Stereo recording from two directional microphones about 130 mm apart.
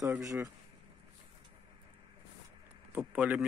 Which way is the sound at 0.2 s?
25° right (ahead or behind).